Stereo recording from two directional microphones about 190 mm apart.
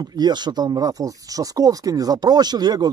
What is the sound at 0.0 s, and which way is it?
Speech, 20° right (ahead or behind).